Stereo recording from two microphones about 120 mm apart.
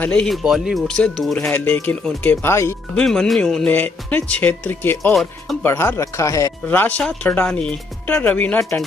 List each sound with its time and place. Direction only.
0.0 s speech: 10° left (ahead or behind)
0.4 s speech: 5° right (ahead or behind); by 2.5 s 10° left (ahead or behind)
2.5 s speech: 25° left (ahead or behind)
3.0 s speech: 5° left (ahead or behind)
5.1 s speech: centre (ahead or behind)
5.6 s speech: 20° left (ahead or behind)
6.7 s speech: 15° left (ahead or behind)